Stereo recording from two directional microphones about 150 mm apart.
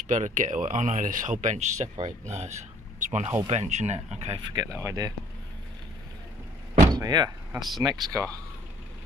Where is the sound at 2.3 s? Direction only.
50° right (ahead or behind).